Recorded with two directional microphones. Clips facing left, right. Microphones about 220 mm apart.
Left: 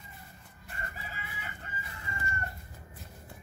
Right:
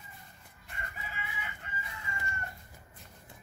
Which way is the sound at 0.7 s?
40° left (ahead or behind).